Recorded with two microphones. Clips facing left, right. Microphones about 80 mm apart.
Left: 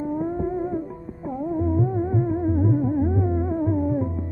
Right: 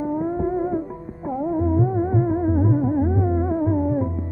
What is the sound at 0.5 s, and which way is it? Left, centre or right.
Music, right.